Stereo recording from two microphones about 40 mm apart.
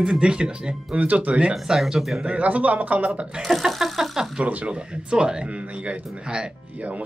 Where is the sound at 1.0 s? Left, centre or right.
Right.